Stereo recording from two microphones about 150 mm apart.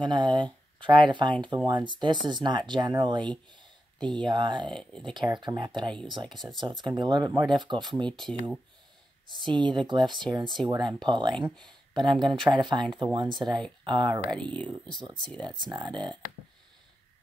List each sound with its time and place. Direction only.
0.0 s speech: 30° right (ahead or behind)
4.6 s speech: 5° left (ahead or behind)
5.1 s speech: 30° right (ahead or behind)
8.1 s speech: 5° left (ahead or behind)
9.3 s speech: 30° right (ahead or behind)
14.4 s speech: 5° left (ahead or behind)
15.0 s speech: 30° right (ahead or behind)